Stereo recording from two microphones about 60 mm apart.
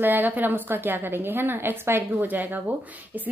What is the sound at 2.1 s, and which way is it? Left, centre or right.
Speech, right.